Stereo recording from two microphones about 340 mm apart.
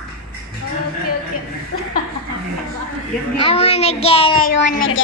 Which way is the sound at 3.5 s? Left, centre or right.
Centre.